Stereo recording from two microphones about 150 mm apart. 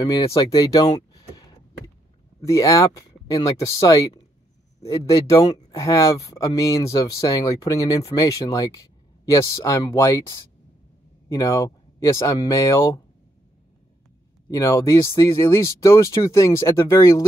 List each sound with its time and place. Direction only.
0.3 s speech: 25° left (ahead or behind)
2.4 s speech: 20° left (ahead or behind)
11.2 s speech: 20° left (ahead or behind)
14.5 s speech: 20° left (ahead or behind)